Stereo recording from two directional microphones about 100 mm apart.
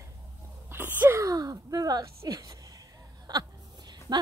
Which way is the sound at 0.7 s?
20° right (ahead or behind).